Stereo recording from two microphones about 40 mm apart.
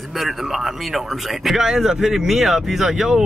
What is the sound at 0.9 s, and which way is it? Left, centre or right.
Speech, centre.